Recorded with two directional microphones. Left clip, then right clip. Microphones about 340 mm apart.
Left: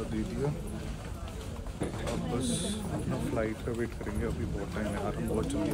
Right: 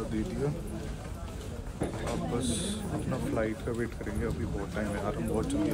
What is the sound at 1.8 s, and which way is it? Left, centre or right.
Speech, centre.